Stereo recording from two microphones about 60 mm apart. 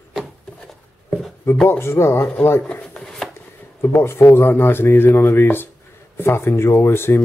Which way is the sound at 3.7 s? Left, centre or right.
Left.